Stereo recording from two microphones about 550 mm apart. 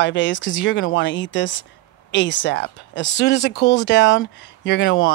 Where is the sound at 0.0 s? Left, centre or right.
Centre.